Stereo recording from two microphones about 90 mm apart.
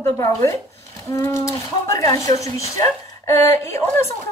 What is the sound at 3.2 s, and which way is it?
Speech, 30° left (ahead or behind).